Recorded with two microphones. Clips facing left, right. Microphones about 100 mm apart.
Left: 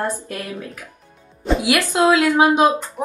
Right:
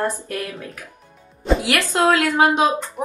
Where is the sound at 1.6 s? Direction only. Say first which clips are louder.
Left 3 dB; 15° left (ahead or behind).